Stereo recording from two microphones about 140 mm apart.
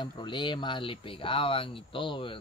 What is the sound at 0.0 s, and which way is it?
Speech, 35° left (ahead or behind).